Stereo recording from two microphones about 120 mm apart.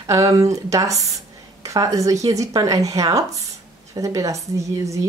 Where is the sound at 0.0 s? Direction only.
30° right (ahead or behind).